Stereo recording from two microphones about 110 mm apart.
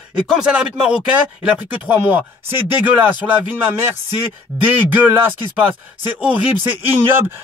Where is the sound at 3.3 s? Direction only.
20° right (ahead or behind).